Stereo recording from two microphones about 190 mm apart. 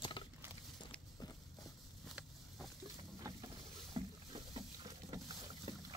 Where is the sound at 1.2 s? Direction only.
20° left (ahead or behind).